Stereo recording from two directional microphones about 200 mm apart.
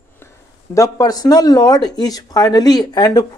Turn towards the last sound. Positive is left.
turn(degrees=20)  # may be behind; listen again after turning